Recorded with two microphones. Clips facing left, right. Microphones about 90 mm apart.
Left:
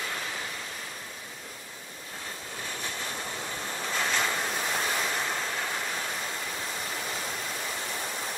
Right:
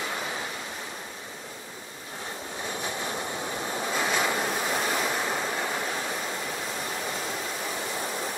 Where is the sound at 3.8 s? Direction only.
10° right (ahead or behind).